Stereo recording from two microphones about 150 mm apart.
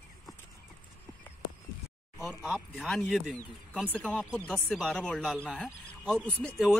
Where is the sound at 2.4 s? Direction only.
Centre (ahead or behind).